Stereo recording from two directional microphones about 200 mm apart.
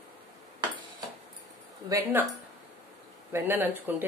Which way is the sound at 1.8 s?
15° right (ahead or behind).